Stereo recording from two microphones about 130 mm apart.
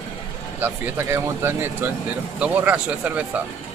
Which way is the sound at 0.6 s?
20° right (ahead or behind).